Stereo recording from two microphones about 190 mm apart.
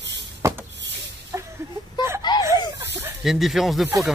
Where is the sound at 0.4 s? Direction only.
15° right (ahead or behind).